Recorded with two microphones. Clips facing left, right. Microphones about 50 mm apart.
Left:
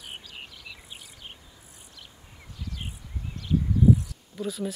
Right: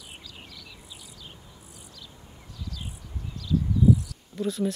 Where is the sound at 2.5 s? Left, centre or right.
Left.